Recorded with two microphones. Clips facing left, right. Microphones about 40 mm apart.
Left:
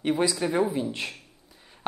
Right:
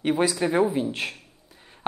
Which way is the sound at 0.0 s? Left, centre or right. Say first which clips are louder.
Right 2 dB; centre.